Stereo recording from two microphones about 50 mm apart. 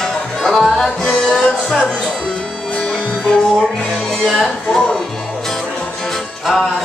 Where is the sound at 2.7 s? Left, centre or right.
Left.